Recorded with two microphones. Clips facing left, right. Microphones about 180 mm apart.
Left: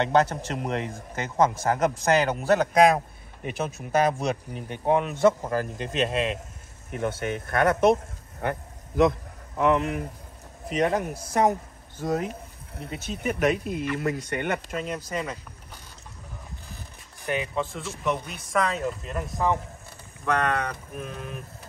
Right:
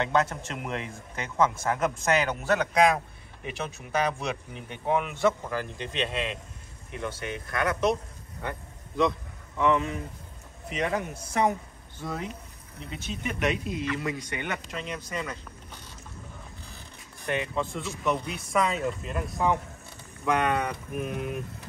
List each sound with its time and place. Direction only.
0.2 s a man's voice: 35° left (ahead or behind); by 10.0 s 55° left (ahead or behind)
10.7 s a man's voice: 40° left (ahead or behind)
13.9 s a man's voice: 55° left (ahead or behind); by 15.3 s 35° left (ahead or behind)
17.3 s speech: centre (ahead or behind)